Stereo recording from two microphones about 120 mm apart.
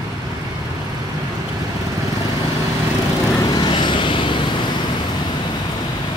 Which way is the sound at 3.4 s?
35° left (ahead or behind).